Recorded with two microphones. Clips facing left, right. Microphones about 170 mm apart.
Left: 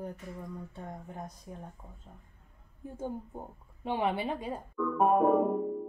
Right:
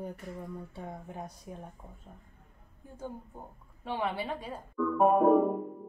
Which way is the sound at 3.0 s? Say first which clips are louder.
Left 4 dB; 20° left (ahead or behind).